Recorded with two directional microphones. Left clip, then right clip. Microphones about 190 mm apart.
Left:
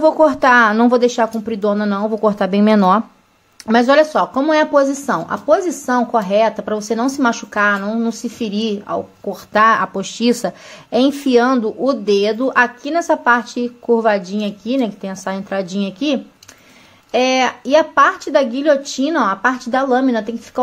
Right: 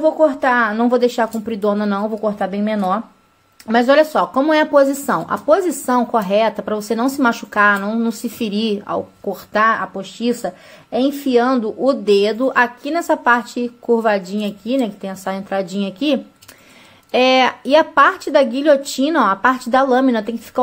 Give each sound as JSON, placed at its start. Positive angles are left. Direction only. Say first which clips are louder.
{"t": 0.0, "sound": "speech", "louder": "left 3 dB", "side_deg": 15}
{"t": 2.2, "sound": "speech", "louder": "left 9 dB", "side_deg": 15}
{"t": 3.6, "sound": "speech", "louder": "left 1 dB", "side_deg": 5}
{"t": 9.9, "sound": "a woman's voice", "louder": "left 4 dB", "side_deg": 15}